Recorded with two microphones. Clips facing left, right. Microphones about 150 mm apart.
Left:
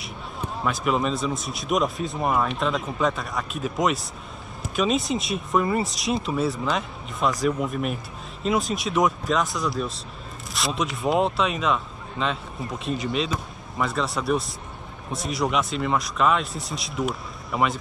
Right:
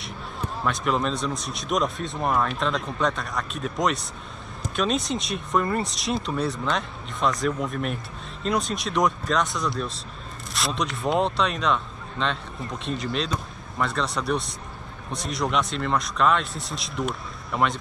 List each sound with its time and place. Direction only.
0.0 s speech: centre (ahead or behind)